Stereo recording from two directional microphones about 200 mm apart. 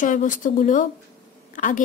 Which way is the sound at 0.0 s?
40° left (ahead or behind).